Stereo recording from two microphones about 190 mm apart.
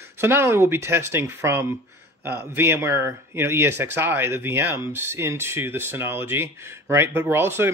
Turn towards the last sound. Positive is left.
turn(degrees=-10)  # may be behind; listen again after turning